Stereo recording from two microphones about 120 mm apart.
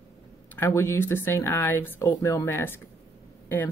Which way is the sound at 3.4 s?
15° left (ahead or behind).